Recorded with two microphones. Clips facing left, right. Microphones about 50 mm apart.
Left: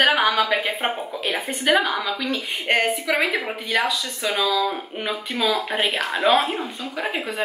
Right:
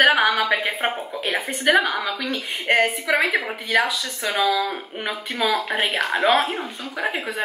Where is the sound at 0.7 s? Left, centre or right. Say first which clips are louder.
Even; centre.